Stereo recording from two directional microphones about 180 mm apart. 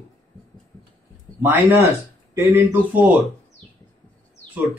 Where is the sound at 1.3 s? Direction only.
5° left (ahead or behind).